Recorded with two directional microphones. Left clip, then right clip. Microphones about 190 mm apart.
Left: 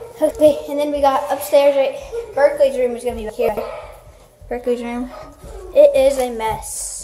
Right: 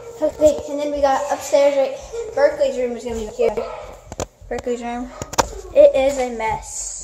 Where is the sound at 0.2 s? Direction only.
45° left (ahead or behind).